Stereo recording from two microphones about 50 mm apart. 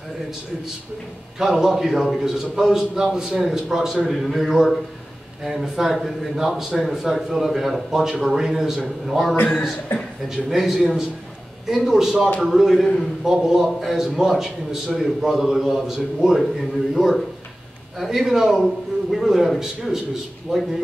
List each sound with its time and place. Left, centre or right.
1.4 s a man's voice: centre